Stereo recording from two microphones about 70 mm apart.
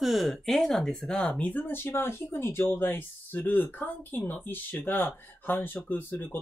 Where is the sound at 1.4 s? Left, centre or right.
Left.